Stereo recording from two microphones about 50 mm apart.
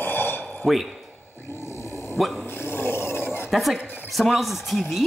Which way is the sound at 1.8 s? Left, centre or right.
Right.